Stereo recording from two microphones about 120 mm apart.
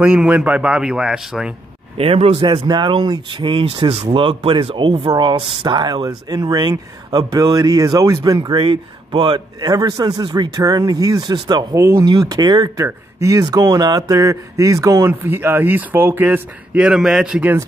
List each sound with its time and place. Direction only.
0.0 s speech: 10° right (ahead or behind)
2.0 s speech: 55° right (ahead or behind)
2.4 s speech: 40° right (ahead or behind)
11.7 s speech: 25° right (ahead or behind)
12.0 s speech: 35° right (ahead or behind); by 17.6 s 10° right (ahead or behind)